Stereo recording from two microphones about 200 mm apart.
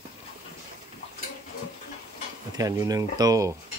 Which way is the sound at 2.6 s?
15° right (ahead or behind).